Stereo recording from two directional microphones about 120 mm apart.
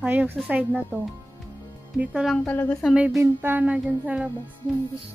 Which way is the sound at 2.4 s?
15° left (ahead or behind).